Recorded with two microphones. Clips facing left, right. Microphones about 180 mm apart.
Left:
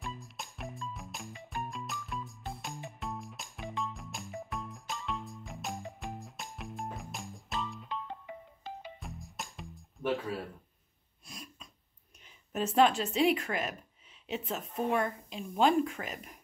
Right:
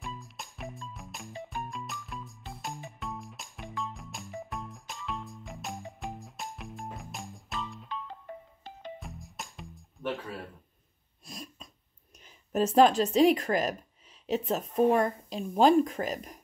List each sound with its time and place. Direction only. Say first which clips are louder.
0.0 s music: right 1 dB; centre (ahead or behind)
11.2 s throat clearing: right 5 dB; 40° right (ahead or behind)
12.5 s speech: right 5 dB; 40° right (ahead or behind)